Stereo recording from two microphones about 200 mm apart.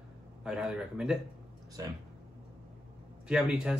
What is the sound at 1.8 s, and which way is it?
Speech, 20° right (ahead or behind).